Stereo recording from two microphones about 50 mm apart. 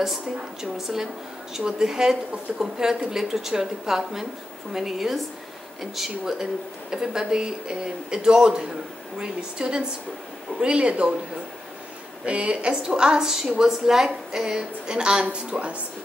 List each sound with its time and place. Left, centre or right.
0.0 s a woman's voice: centre
12.3 s a woman's voice: right